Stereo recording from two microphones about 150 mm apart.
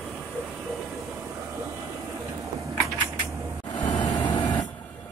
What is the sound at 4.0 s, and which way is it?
Vehicle, 30° left (ahead or behind).